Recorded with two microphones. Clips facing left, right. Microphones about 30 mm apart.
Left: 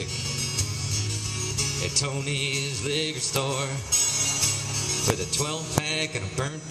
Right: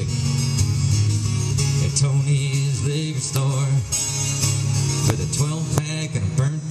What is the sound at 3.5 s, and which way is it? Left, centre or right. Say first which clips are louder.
Music: right 4 dB; centre.